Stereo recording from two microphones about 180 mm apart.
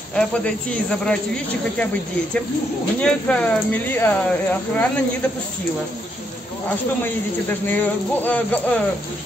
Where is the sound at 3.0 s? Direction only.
5° left (ahead or behind).